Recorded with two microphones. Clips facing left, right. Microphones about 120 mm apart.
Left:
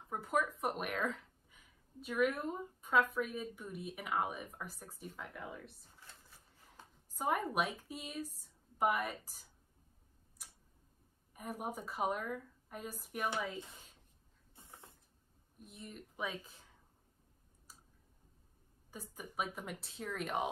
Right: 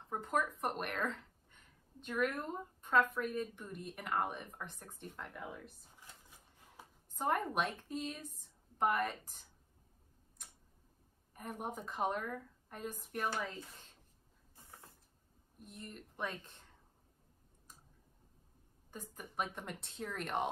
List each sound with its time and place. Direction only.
0.1 s speech: 5° left (ahead or behind)
5.9 s a sound: 15° right (ahead or behind)
7.2 s a woman's voice: 5° left (ahead or behind)
10.4 s tick-tock: 5° left (ahead or behind)
11.3 s speech: 5° left (ahead or behind)
14.5 s a sound: 20° left (ahead or behind)
15.6 s speech: centre (ahead or behind)
18.9 s speech: 5° left (ahead or behind)